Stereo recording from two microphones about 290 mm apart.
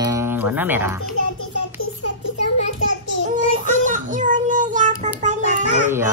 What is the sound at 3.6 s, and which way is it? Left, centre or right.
A child's voice, right.